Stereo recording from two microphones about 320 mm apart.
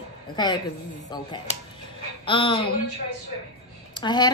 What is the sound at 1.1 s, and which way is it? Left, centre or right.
Speech, centre.